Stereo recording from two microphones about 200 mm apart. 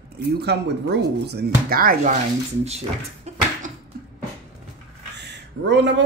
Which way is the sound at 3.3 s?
35° right (ahead or behind).